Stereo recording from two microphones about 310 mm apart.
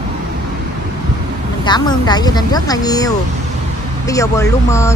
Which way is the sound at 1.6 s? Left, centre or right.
Centre.